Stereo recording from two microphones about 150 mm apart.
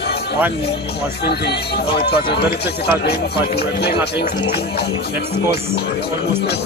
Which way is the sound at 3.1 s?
90° left.